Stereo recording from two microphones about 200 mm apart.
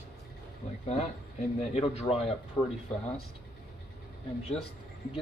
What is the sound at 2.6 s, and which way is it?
Speech, 15° left (ahead or behind).